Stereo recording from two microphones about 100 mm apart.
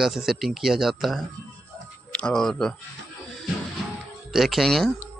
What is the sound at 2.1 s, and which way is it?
Speech, 10° left (ahead or behind).